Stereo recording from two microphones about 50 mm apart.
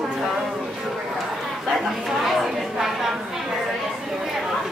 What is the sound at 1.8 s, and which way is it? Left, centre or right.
Chatter, centre.